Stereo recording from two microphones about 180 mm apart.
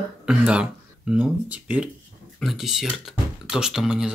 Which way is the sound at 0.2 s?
5° right (ahead or behind).